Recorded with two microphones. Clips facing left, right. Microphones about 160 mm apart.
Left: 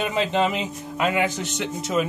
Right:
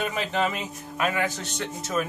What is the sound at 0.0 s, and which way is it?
Speech, 20° left (ahead or behind).